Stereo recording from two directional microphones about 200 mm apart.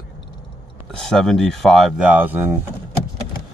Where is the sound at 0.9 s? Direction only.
5° left (ahead or behind).